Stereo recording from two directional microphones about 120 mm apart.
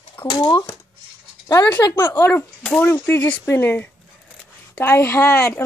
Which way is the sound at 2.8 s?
15° left (ahead or behind).